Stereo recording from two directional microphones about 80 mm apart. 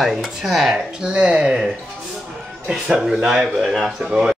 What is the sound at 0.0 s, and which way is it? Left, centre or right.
Speech, centre.